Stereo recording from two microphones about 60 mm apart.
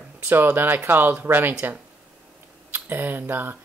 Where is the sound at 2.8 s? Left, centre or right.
Right.